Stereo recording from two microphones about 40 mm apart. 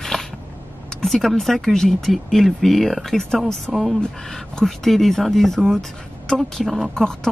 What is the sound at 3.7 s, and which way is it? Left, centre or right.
Speech, centre.